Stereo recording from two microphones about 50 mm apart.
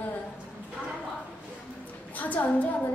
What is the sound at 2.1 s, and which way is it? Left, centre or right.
Speech, left.